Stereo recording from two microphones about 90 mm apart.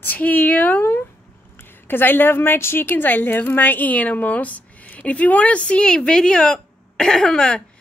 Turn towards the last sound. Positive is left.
turn(degrees=10)  # may be behind; listen again after turning